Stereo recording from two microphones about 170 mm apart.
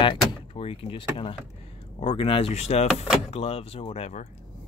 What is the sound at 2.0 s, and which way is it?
Speech, 30° left (ahead or behind).